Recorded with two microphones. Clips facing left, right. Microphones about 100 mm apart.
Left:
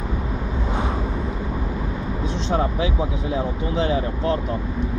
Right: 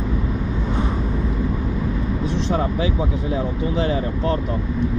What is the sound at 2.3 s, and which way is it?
Vehicle, 25° left (ahead or behind).